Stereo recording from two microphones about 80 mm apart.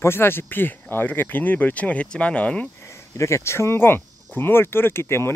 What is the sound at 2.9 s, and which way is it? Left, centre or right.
Speech, left.